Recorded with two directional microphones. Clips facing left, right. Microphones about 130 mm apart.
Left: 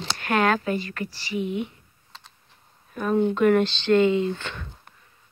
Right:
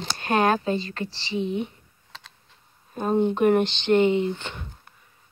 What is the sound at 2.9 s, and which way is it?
Speech, 30° right (ahead or behind).